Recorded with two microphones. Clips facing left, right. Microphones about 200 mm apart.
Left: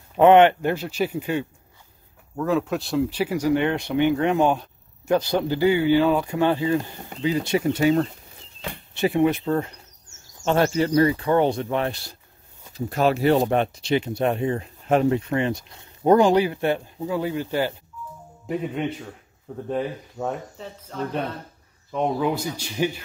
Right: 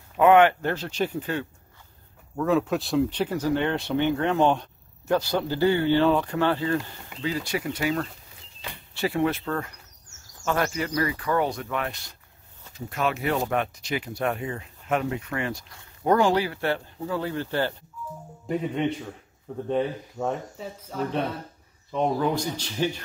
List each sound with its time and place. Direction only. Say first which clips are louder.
0.2 s speech: left 3 dB; 25° left (ahead or behind)
2.3 s speech: even; centre (ahead or behind)
18.5 s speech: even; centre (ahead or behind)